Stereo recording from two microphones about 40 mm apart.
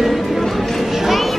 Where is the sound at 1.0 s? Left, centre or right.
Centre.